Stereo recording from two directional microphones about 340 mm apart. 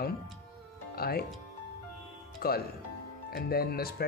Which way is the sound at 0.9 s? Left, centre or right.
Left.